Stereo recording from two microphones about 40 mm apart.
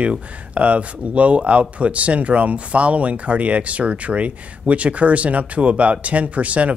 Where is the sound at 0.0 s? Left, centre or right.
Right.